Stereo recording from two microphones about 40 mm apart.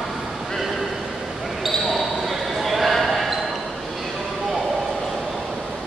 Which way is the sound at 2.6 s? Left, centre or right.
Centre.